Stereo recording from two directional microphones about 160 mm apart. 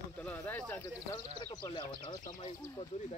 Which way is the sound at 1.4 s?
25° left (ahead or behind).